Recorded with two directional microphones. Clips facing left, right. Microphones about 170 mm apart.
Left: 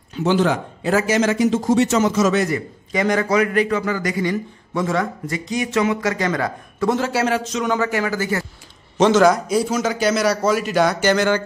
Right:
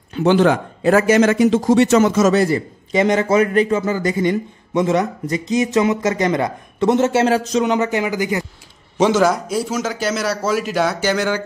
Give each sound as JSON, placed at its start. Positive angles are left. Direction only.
{"t": 0.1, "sound": "speech", "side_deg": -60}
{"t": 2.3, "sound": "a man's voice", "side_deg": -30}
{"t": 7.6, "sound": "a man's voice", "side_deg": -20}